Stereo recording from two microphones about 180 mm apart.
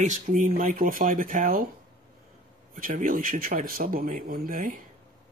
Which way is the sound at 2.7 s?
50° right (ahead or behind).